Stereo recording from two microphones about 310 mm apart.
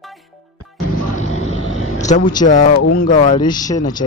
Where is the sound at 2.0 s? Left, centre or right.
Left.